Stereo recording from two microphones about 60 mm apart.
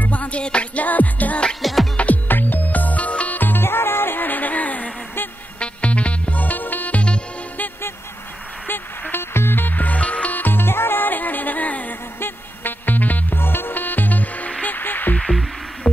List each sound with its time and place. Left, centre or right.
0.0 s music: left
1.6 s music: centre
2.0 s music: left
9.1 s music: left
15.1 s music: centre